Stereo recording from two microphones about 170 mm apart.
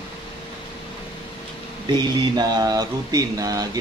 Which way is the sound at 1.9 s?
25° right (ahead or behind).